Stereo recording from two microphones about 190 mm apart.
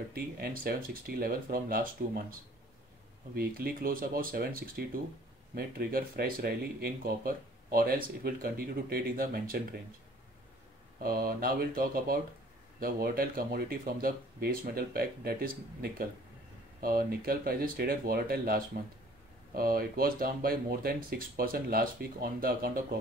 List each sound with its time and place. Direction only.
0.1 s speech: 55° right (ahead or behind)
3.3 s speech: 50° right (ahead or behind)
11.0 s speech: 50° right (ahead or behind)